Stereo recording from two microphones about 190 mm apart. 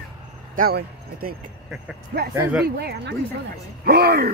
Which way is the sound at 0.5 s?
50° right (ahead or behind).